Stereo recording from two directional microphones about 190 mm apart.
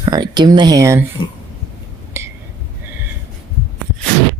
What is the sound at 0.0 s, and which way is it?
Speech, 20° right (ahead or behind).